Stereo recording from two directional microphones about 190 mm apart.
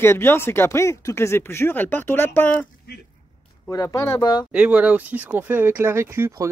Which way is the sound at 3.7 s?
15° left (ahead or behind).